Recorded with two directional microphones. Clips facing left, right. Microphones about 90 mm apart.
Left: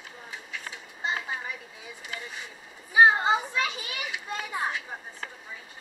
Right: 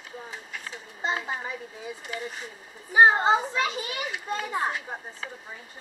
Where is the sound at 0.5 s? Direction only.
35° right (ahead or behind).